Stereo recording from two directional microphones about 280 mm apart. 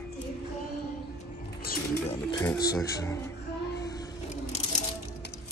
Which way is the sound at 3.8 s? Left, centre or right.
Centre.